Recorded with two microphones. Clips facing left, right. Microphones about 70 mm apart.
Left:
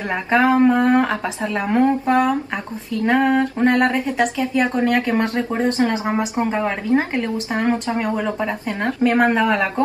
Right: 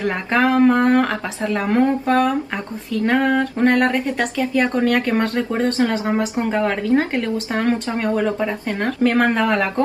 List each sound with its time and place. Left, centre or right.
0.3 s a woman's voice: centre